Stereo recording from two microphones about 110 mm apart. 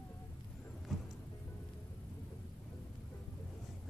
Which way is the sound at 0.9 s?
Centre (ahead or behind).